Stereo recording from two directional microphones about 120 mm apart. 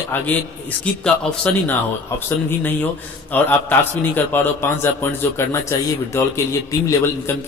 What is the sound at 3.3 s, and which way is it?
A man's voice, 15° left (ahead or behind).